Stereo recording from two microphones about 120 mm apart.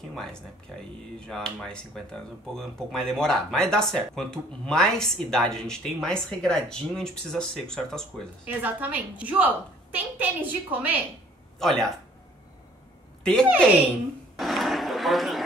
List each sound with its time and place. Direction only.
0.1 s speech: 5° left (ahead or behind)
8.5 s a woman's voice: 15° right (ahead or behind)
11.6 s speech: 5° left (ahead or behind)
13.2 s a woman's voice: 5° left (ahead or behind)
14.3 s a sound: centre (ahead or behind)